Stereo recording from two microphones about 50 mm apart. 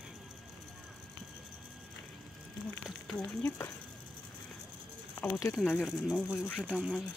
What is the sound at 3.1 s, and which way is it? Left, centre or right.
Speech, centre.